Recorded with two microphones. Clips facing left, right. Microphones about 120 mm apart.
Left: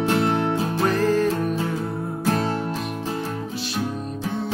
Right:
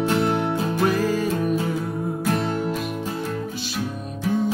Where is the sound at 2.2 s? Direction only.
30° left (ahead or behind).